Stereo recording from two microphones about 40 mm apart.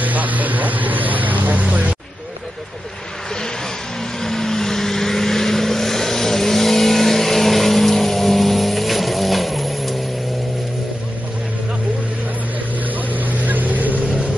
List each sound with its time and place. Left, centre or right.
0.0 s vehicle: right
4.2 s vehicle: centre
12.9 s vehicle: right